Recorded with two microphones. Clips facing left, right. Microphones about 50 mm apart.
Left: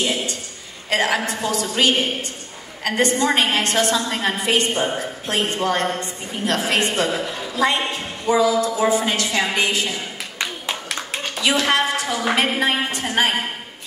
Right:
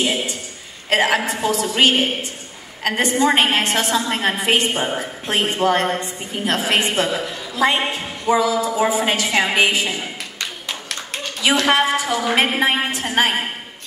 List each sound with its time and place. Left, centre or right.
0.0 s a sound: centre
0.9 s a woman's voice: centre
4.6 s a woman's voice: centre
7.1 s a woman's voice: centre
7.6 s a woman's voice: centre
11.6 s a woman's voice: centre